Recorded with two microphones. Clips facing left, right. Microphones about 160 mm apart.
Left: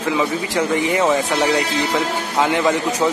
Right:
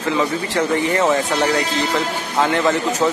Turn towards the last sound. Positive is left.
turn(degrees=10)  # may be behind; listen again after turning